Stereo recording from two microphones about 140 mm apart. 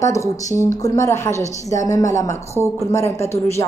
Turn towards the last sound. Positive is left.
turn(degrees=20)  # may be behind; listen again after turning